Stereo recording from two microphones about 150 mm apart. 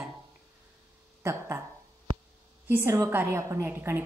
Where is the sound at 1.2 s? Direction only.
15° right (ahead or behind).